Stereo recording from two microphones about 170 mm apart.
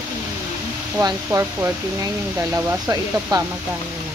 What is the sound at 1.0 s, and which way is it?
Speech, 20° right (ahead or behind).